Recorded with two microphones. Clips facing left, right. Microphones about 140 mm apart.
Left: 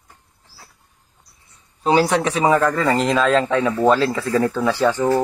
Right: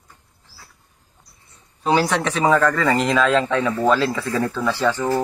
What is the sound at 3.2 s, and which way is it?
Speech, 40° left (ahead or behind).